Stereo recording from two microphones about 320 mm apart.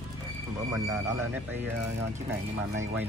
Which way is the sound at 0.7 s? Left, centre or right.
Centre.